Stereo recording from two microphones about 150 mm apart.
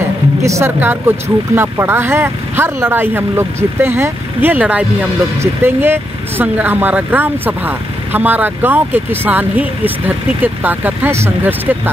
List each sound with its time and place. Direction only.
0.4 s speech: 20° right (ahead or behind)